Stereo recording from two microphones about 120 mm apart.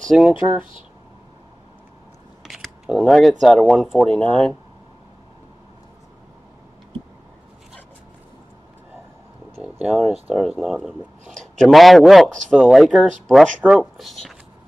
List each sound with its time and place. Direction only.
0.0 s speech: centre (ahead or behind)
2.4 s speech: centre (ahead or behind)
9.6 s a sound: 5° right (ahead or behind)
10.3 s speech: 5° right (ahead or behind)